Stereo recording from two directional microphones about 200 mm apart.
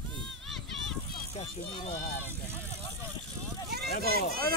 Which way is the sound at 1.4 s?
35° left (ahead or behind).